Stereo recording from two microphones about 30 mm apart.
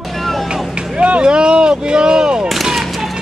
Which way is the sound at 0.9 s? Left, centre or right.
Right.